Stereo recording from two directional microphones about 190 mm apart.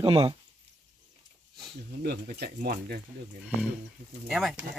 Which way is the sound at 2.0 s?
60° right (ahead or behind).